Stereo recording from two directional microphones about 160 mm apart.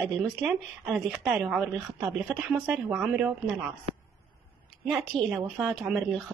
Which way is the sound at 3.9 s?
40° right (ahead or behind).